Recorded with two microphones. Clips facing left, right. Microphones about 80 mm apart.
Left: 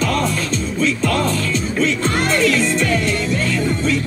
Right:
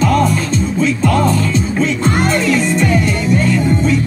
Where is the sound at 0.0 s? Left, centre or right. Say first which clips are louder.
Right 6 dB; centre.